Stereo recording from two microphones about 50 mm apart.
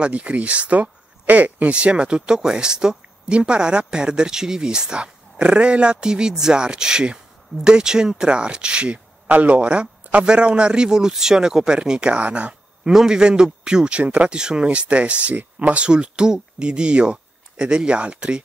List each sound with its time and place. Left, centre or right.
0.0 s speech: right
15.8 s speech: centre